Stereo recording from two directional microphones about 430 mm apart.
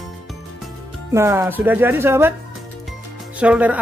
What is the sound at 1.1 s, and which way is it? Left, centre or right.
Speech, centre.